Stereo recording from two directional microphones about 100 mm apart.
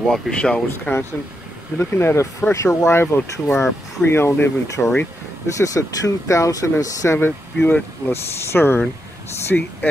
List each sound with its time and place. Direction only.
0.0 s speech: 5° left (ahead or behind)
1.8 s speech: 25° left (ahead or behind)
7.2 s speech: 20° left (ahead or behind)
9.5 s speech: 5° left (ahead or behind)